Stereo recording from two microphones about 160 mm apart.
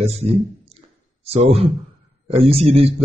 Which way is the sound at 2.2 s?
40° right (ahead or behind).